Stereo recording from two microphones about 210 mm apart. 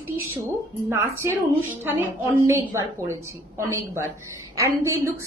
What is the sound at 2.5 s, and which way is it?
Speech, 15° right (ahead or behind).